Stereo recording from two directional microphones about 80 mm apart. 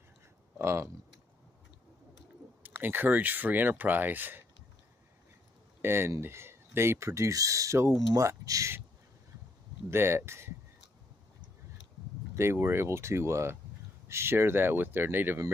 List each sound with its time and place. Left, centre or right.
0.6 s speech: right
2.6 s speech: right
5.8 s speech: right
7.9 s speech: right
9.8 s speech: right
12.4 s speech: right